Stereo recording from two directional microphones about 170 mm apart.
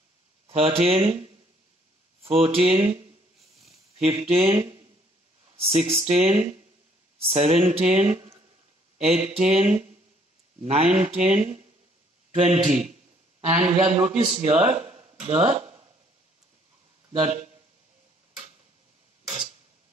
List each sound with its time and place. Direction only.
0.5 s speech: 35° right (ahead or behind)
12.6 s a man's voice: 40° right (ahead or behind)
17.1 s speech: 35° right (ahead or behind)